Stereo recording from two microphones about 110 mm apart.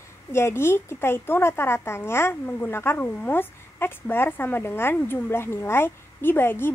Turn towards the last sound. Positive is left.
turn(degrees=20)  # may be behind; listen again after turning